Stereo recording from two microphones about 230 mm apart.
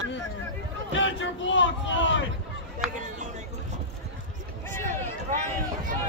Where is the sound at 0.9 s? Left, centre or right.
Left.